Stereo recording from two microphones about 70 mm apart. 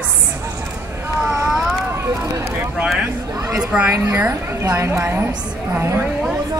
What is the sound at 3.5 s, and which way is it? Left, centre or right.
Speech, centre.